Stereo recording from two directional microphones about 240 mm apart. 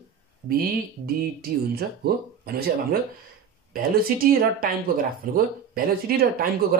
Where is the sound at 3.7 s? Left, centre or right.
Right.